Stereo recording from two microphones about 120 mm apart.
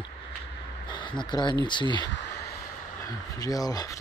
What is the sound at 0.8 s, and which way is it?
Speech, 40° left (ahead or behind).